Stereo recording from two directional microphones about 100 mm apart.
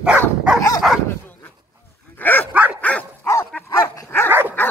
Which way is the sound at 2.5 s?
15° right (ahead or behind).